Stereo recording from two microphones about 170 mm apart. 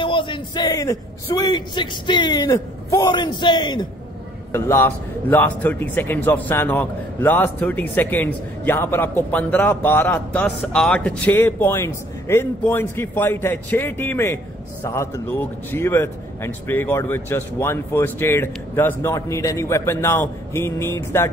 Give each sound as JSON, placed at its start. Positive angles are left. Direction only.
{"t": 0.0, "sound": "a man's voice", "side_deg": 30}
{"t": 4.5, "sound": "a man's voice", "side_deg": 15}